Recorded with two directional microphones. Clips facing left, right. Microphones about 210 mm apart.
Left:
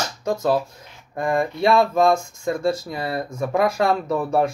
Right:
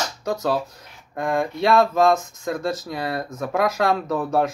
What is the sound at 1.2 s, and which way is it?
Speech, centre (ahead or behind).